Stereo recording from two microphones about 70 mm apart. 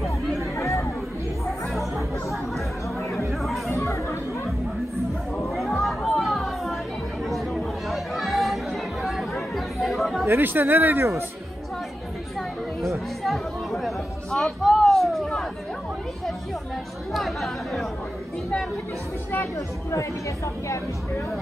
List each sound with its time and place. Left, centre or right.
0.4 s chatter: left
1.4 s chatter: centre
3.3 s music: centre
3.7 s chatter: left
5.4 s children playing: centre
7.2 s chatter: centre
10.2 s speech: right
13.2 s chatter: centre
17.1 s chatter: centre